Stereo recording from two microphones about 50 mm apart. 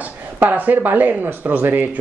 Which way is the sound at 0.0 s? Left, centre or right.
Right.